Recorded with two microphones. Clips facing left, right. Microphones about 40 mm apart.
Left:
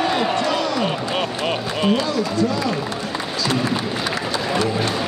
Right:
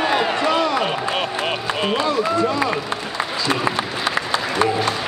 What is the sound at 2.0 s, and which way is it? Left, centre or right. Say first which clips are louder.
Speech: right 2 dB; right.